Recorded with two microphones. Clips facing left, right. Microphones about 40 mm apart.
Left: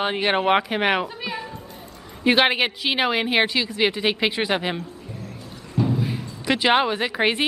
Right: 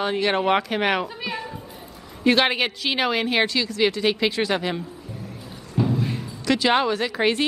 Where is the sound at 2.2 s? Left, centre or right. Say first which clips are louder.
Left 1 dB; centre.